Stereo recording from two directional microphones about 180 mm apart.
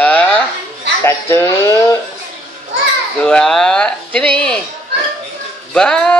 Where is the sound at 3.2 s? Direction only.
5° left (ahead or behind).